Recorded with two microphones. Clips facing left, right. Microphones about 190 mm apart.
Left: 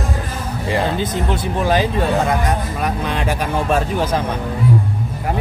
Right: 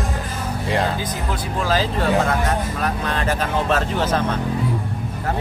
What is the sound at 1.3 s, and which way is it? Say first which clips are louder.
Speech: left 3 dB; 20° left (ahead or behind).